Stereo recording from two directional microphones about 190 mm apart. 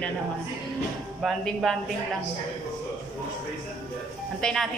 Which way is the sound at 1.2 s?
Centre (ahead or behind).